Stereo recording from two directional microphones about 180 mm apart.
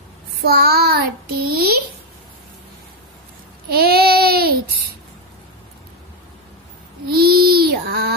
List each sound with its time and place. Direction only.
0.5 s child singing: 60° right (ahead or behind)
3.6 s child singing: 60° right (ahead or behind)
7.1 s a sound: 60° right (ahead or behind)